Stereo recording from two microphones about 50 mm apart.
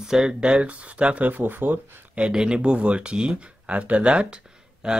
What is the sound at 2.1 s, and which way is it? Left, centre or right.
Speech, centre.